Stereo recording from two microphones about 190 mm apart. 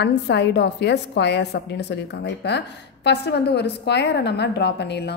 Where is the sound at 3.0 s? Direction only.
60° left (ahead or behind).